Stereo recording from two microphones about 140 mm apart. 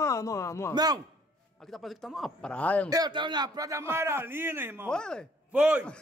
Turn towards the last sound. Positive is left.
turn(degrees=-10)  # may be behind; listen again after turning